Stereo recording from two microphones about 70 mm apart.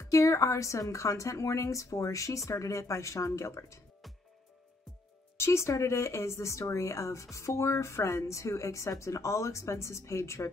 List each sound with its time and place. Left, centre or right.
0.0 s speech: left
5.4 s speech: left